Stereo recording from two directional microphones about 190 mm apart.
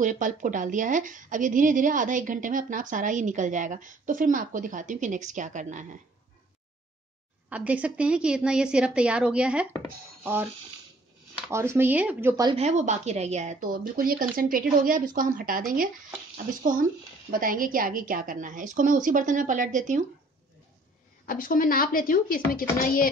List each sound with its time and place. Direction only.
0.0 s a woman's voice: 40° right (ahead or behind)
7.4 s a woman's voice: 5° right (ahead or behind)
11.5 s speech: 15° right (ahead or behind)
12.4 s a woman's voice: 35° right (ahead or behind)
17.3 s a woman's voice: 45° right (ahead or behind)
21.3 s a woman's voice: 45° left (ahead or behind)